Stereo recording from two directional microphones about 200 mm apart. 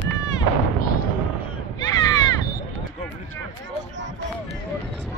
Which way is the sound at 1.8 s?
20° left (ahead or behind).